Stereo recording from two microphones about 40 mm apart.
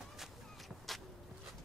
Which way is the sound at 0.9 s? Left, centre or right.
Centre.